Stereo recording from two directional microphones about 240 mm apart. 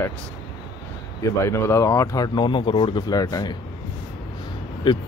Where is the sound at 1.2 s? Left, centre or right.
Centre.